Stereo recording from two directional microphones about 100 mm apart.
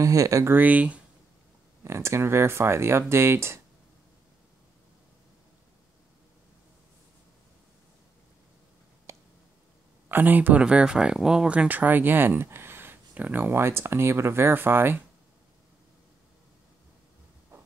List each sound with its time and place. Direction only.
0.0 s speech: 35° right (ahead or behind)
0.5 s speech: 15° right (ahead or behind)
1.9 s speech: 25° right (ahead or behind)
9.1 s a sound: 30° right (ahead or behind)
10.0 s speech: 20° right (ahead or behind)